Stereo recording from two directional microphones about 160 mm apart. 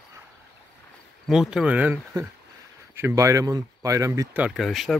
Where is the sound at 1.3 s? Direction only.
5° right (ahead or behind).